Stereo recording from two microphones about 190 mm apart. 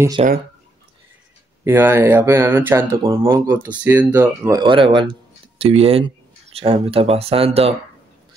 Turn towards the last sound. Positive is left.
turn(degrees=-30)  # may be behind; listen again after turning